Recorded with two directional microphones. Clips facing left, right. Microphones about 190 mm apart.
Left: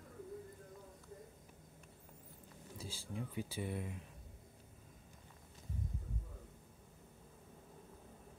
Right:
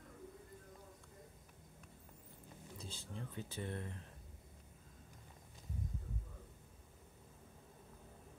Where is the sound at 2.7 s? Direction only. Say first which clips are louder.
Left 4 dB; 10° left (ahead or behind).